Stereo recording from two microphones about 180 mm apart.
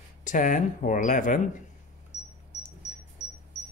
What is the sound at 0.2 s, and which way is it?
Speech, 45° left (ahead or behind).